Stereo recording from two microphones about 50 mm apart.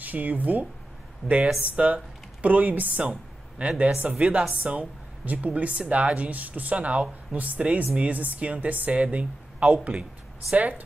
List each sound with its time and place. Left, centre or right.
0.0 s speech: right